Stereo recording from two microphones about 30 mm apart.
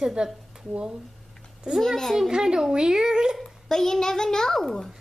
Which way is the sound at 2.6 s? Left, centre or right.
Right.